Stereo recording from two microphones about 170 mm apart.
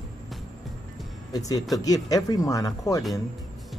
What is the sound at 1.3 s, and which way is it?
Speech, 20° left (ahead or behind).